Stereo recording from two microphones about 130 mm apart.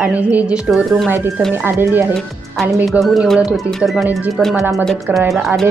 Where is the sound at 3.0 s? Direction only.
Centre (ahead or behind).